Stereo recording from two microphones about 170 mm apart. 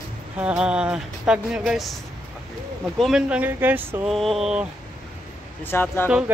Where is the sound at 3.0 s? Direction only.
5° right (ahead or behind).